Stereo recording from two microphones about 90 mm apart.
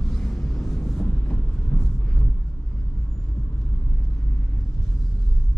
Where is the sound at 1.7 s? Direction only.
10° left (ahead or behind).